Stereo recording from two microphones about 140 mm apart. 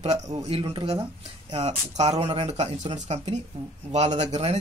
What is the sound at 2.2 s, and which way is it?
Speech, 45° right (ahead or behind).